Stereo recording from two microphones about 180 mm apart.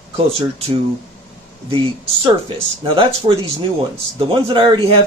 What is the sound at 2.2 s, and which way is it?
Speech, 30° right (ahead or behind).